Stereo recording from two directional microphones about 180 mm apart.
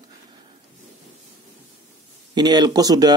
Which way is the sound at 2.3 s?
25° right (ahead or behind).